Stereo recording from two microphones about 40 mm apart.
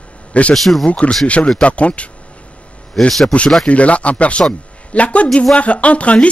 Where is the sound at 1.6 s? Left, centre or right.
Left.